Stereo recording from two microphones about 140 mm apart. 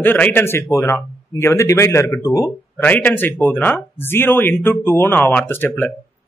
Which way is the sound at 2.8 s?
10° left (ahead or behind).